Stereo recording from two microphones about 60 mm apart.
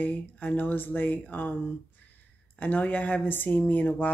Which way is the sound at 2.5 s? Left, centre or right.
Left.